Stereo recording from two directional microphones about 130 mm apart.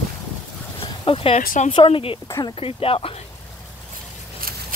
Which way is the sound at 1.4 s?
90° left.